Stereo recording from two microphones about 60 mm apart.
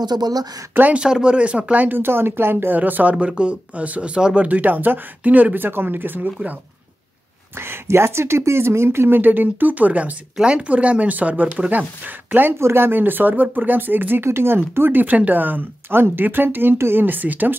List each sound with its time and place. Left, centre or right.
0.9 s speech: centre
2.0 s speech: right; by 4.5 s centre
4.5 s speech: right
7.5 s speech: right
9.2 s speech: right
12.5 s speech: right
14.8 s speech: right